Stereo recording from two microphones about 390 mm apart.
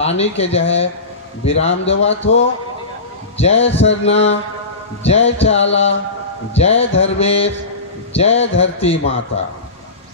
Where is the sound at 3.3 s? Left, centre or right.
Centre.